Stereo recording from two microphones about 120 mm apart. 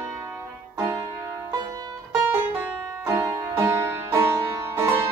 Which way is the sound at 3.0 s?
20° right (ahead or behind).